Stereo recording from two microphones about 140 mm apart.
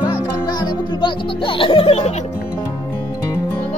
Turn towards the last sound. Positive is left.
turn(degrees=45)  # may be behind; listen again after turning